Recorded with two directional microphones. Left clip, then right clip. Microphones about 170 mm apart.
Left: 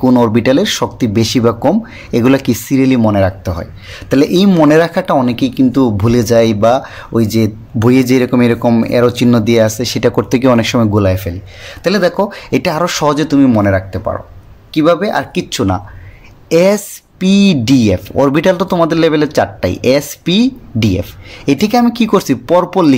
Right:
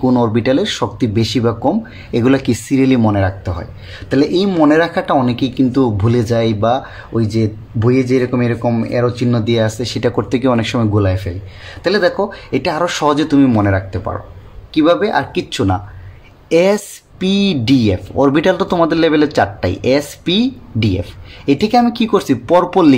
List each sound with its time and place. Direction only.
0.0 s speech: 30° left (ahead or behind)